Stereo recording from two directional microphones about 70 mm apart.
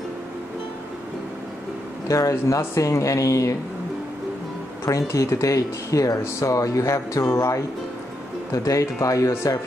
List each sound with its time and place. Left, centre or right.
2.0 s speech: left
4.8 s speech: left
8.6 s speech: left